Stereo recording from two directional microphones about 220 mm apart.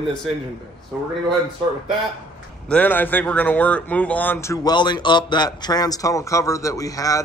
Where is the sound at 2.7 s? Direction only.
5° left (ahead or behind).